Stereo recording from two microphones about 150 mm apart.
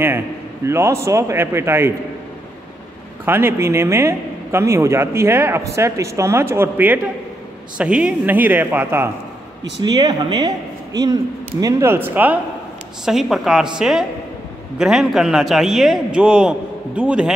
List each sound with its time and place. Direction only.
0.7 s speech: 15° right (ahead or behind)
3.3 s speech: 15° right (ahead or behind)
9.8 s a man's voice: 30° right (ahead or behind); by 17.3 s 5° right (ahead or behind)